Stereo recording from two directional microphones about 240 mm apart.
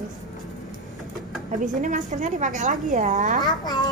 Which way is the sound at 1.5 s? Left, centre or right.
Right.